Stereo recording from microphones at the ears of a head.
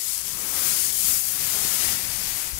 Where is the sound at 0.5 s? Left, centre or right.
Left.